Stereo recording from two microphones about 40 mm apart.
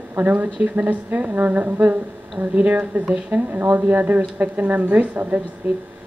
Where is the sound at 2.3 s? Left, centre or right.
Right.